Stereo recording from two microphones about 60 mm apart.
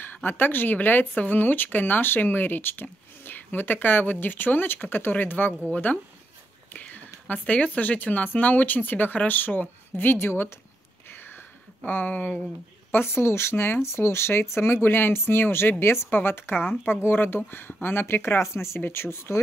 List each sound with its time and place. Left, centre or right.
0.0 s speech: left
6.7 s a sound: left
7.4 s speech: left
11.1 s a sound: left
11.8 s speech: left
12.9 s speech: left